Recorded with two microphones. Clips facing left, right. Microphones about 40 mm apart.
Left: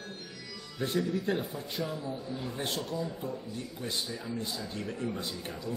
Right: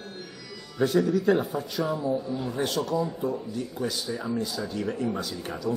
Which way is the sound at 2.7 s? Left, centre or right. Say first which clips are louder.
Right 8 dB; right.